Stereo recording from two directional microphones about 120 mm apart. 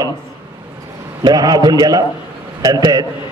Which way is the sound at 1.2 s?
35° right (ahead or behind).